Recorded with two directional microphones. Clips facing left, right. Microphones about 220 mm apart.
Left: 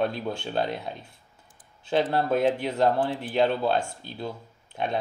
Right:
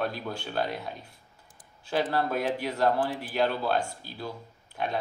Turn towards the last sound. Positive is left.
turn(degrees=25)  # may be behind; listen again after turning